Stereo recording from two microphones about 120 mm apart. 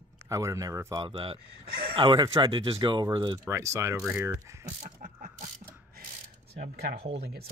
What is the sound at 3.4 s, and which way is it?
Speech, 25° right (ahead or behind).